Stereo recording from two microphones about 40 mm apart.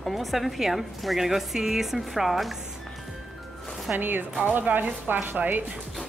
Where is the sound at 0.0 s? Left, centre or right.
Centre.